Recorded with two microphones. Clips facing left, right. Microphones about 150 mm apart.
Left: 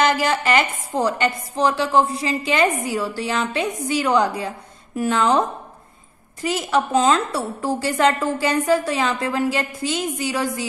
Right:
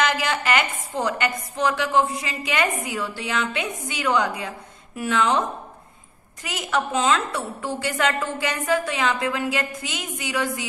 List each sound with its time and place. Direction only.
0.0 s a woman's voice: 35° left (ahead or behind)
6.4 s a woman's voice: 30° left (ahead or behind)